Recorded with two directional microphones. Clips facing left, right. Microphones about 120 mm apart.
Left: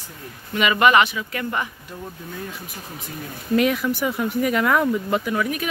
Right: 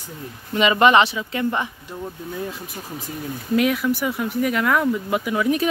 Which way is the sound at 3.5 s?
5° right (ahead or behind).